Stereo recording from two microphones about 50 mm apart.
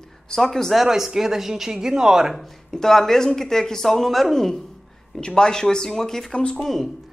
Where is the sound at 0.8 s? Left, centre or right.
Centre.